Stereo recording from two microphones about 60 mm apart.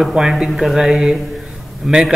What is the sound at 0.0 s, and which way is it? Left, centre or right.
A man's voice, centre.